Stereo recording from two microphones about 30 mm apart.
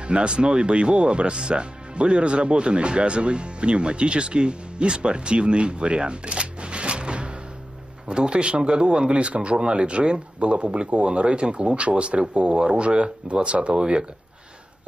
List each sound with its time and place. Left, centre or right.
0.0 s speech: right
9.6 s speech: right